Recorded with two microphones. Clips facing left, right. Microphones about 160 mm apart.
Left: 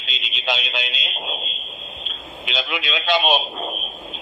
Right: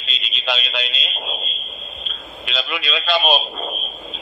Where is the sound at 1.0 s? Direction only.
15° left (ahead or behind).